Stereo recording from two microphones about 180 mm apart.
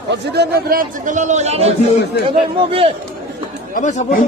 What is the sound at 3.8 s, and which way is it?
Speech, 45° left (ahead or behind).